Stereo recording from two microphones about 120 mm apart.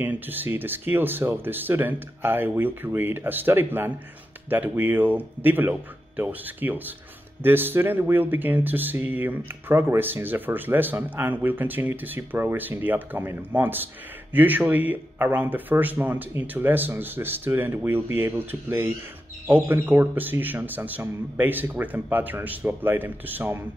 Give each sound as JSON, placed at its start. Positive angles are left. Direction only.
{"t": 0.0, "sound": "speech", "side_deg": -15}